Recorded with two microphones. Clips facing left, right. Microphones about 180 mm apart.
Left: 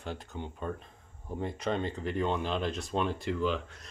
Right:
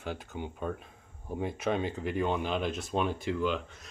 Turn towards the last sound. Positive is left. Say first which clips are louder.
# even
turn(degrees=0)  # may be behind; listen again after turning